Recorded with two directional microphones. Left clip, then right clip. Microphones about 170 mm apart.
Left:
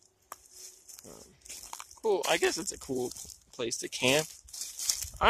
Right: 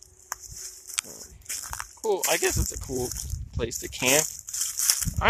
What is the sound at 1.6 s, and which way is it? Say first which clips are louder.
Speech: right 1 dB; 15° left (ahead or behind).